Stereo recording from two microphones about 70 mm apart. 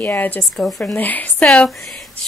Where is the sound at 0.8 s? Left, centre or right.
Left.